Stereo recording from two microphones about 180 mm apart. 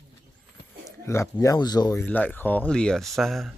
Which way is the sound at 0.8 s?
15° left (ahead or behind).